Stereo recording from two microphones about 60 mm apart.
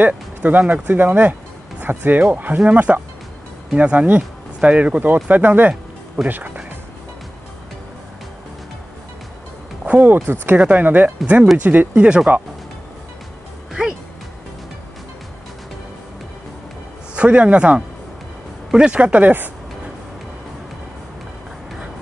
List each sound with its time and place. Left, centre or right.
0.0 s speech: right
9.8 s speech: right
10.1 s speech: right
10.6 s speech: right
13.8 s speech: centre
17.1 s speech: right